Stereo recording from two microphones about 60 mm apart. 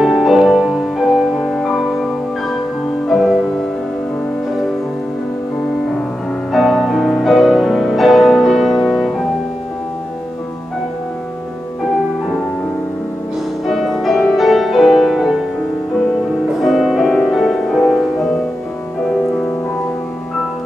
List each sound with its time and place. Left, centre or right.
0.0 s music: centre
3.1 s music: centre
6.5 s music: centre
13.7 s music: centre
16.6 s music: centre